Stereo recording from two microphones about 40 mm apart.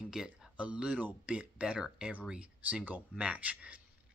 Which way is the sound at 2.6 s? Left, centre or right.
Right.